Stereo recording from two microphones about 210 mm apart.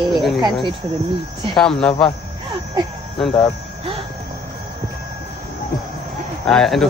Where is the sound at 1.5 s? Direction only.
5° left (ahead or behind).